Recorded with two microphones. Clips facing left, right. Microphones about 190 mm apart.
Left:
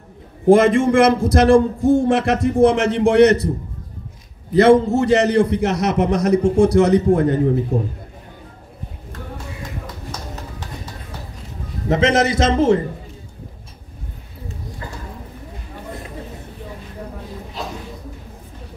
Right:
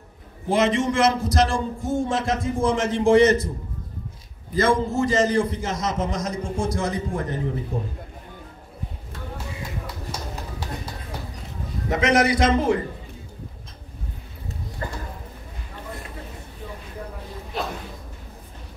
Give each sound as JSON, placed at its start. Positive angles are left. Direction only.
{"t": 0.5, "sound": "a man's voice", "side_deg": 50}
{"t": 4.6, "sound": "a man's voice", "side_deg": 65}
{"t": 11.9, "sound": "a man's voice", "side_deg": 25}